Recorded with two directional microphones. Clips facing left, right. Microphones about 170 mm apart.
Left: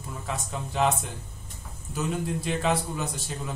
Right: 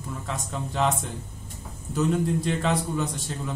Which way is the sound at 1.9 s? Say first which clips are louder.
Right 5 dB; 5° left (ahead or behind).